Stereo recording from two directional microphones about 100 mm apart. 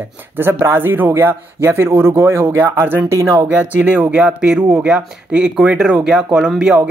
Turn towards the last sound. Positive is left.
turn(degrees=-10)  # may be behind; listen again after turning